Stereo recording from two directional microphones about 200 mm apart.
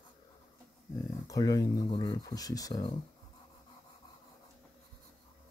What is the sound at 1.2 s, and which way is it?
Speech, 15° left (ahead or behind).